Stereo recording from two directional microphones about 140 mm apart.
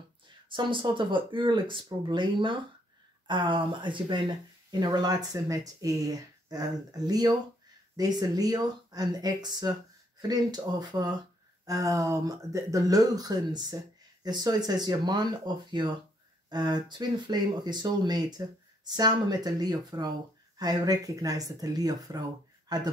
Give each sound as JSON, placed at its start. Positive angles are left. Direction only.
{"t": 0.5, "sound": "speech", "side_deg": -35}